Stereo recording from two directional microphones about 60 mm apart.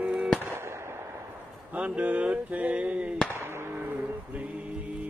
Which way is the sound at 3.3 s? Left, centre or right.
Right.